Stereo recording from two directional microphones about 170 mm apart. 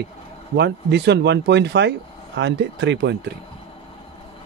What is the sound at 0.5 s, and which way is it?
Speech, 85° right.